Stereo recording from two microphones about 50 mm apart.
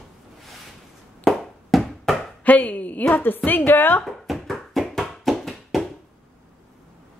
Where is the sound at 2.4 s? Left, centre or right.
Left.